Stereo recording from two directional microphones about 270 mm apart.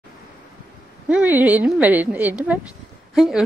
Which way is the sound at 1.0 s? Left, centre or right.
Centre.